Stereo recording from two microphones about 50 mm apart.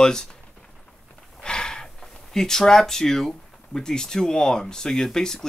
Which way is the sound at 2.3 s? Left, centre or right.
Centre.